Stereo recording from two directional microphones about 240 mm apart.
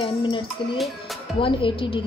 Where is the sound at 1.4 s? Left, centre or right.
Left.